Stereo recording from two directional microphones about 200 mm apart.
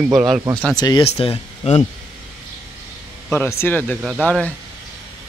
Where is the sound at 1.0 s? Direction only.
30° left (ahead or behind).